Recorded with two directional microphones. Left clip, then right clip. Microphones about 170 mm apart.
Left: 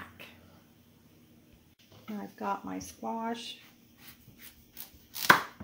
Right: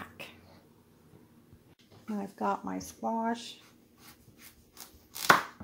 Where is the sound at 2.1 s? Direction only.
40° right (ahead or behind).